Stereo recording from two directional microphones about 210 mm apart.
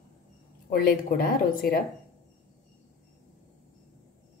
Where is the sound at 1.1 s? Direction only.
45° left (ahead or behind).